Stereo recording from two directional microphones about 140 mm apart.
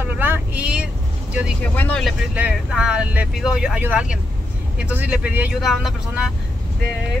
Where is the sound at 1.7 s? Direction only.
15° left (ahead or behind).